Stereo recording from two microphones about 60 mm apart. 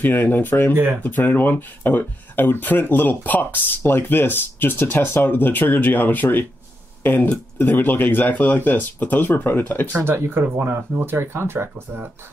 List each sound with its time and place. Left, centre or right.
0.0 s speech: left
9.9 s speech: right